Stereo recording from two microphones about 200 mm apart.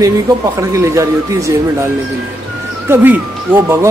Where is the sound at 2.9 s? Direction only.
10° right (ahead or behind).